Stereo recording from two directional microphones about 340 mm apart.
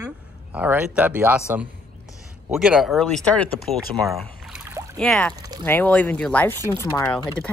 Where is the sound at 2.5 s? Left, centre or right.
Centre.